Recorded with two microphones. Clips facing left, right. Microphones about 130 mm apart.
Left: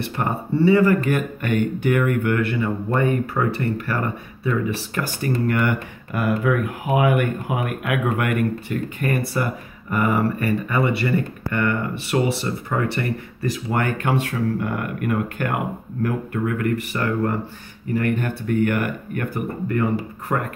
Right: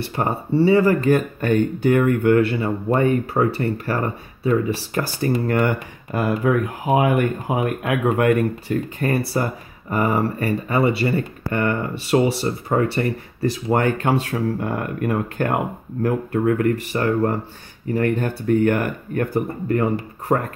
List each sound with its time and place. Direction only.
0.1 s speech: 30° right (ahead or behind)